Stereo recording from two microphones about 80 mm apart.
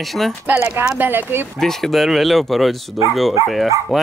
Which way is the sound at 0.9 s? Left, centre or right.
Right.